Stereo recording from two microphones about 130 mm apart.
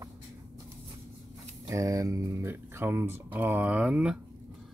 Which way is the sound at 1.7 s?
25° right (ahead or behind).